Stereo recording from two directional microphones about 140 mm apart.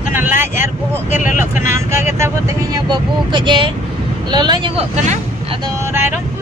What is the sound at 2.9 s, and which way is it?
Speech, 35° right (ahead or behind).